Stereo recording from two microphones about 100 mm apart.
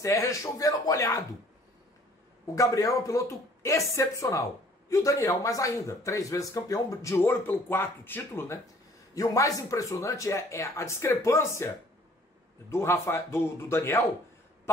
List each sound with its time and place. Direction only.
0.0 s speech: 30° left (ahead or behind)
2.5 s speech: 35° left (ahead or behind)
9.1 s speech: 35° left (ahead or behind)
12.7 s a man's voice: 25° left (ahead or behind)